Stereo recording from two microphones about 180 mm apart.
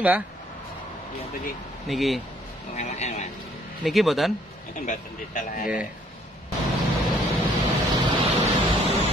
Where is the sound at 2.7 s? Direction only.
40° left (ahead or behind).